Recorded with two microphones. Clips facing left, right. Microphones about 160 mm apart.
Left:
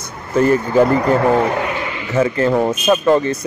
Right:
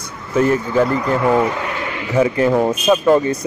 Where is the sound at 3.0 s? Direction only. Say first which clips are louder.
Even; 10° right (ahead or behind).